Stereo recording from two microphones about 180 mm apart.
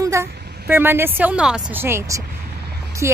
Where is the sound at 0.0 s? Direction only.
15° right (ahead or behind).